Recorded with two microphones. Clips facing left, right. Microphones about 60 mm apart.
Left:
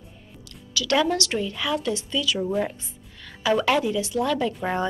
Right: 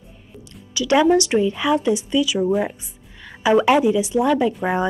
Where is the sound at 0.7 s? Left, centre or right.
Right.